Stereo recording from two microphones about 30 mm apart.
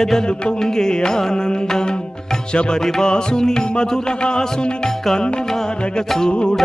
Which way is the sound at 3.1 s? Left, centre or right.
Left.